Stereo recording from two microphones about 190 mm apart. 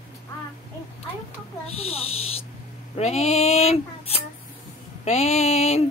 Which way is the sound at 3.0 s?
35° left (ahead or behind).